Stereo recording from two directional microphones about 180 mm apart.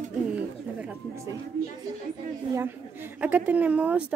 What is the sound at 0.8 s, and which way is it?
Speech, 15° right (ahead or behind).